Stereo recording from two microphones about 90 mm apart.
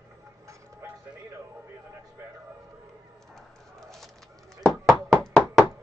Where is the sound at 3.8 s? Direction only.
5° left (ahead or behind).